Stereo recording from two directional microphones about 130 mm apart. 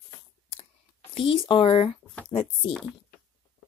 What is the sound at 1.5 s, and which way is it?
Speech, 45° left (ahead or behind).